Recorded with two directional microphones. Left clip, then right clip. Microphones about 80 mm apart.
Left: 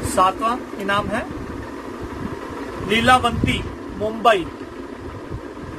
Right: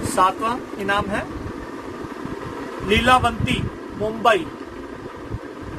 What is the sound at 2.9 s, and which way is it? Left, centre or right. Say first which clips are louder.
Speech: left 1 dB; centre.